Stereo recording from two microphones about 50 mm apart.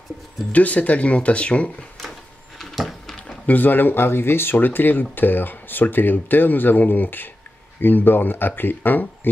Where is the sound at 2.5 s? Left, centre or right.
Centre.